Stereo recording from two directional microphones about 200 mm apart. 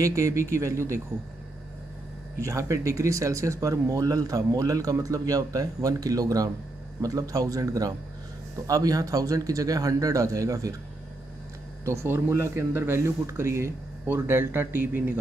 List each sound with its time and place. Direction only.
0.0 s speech: 15° right (ahead or behind)
2.4 s speech: 15° right (ahead or behind)
11.8 s speech: 15° right (ahead or behind)